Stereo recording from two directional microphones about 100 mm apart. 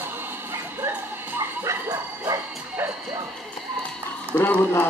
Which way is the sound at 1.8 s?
40° right (ahead or behind).